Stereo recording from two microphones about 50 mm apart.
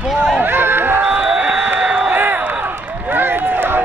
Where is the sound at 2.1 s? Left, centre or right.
Right.